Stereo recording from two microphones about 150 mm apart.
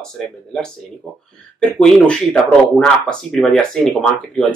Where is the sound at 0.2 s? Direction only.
5° left (ahead or behind).